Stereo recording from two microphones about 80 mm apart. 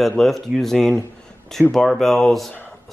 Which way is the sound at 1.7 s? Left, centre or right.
Centre.